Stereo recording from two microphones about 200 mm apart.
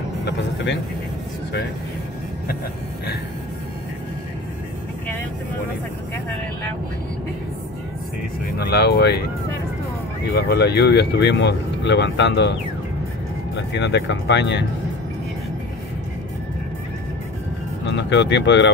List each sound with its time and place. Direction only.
0.2 s speech: 60° left (ahead or behind)
8.5 s speech: 55° left (ahead or behind)
10.5 s speech: 55° left (ahead or behind)
13.6 s speech: 60° left (ahead or behind)
17.8 s speech: 60° left (ahead or behind)